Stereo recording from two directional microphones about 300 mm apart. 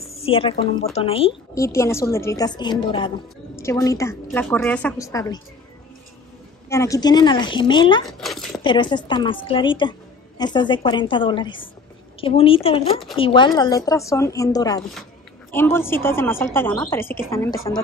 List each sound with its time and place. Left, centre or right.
0.1 s a woman's voice: centre
6.7 s a woman's voice: centre
8.2 s speech: centre
8.6 s a woman's voice: centre